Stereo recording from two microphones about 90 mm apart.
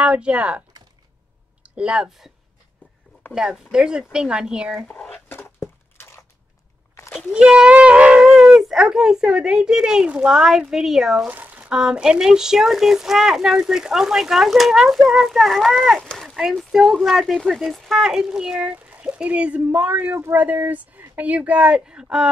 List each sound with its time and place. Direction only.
0.0 s speech: 15° right (ahead or behind)
3.3 s speech: 10° right (ahead or behind)
4.8 s speech: 10° left (ahead or behind)
5.3 s a sound: 25° left (ahead or behind)
7.2 s speech: 5° right (ahead or behind)
11.2 s a sound: 20° right (ahead or behind)
11.7 s speech: 5° right (ahead or behind)